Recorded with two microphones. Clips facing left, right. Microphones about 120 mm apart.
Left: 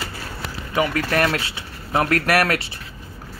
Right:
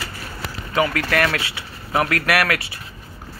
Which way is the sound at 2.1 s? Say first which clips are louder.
Left 1 dB; 35° left (ahead or behind).